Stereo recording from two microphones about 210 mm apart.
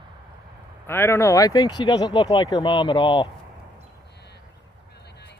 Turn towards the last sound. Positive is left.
turn(degrees=50)  # may be behind; listen again after turning